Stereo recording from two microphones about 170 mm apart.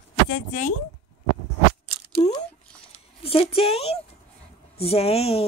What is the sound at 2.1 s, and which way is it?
Speech, 40° left (ahead or behind).